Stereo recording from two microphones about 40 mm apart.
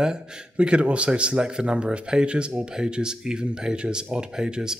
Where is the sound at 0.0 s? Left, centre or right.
Centre.